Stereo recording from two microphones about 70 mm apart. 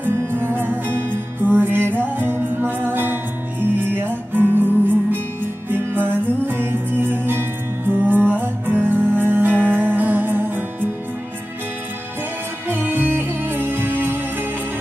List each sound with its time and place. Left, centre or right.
0.0 s music: right
12.6 s music: right